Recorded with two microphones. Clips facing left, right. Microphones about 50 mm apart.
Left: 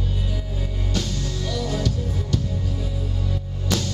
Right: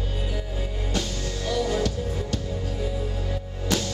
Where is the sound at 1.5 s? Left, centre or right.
Centre.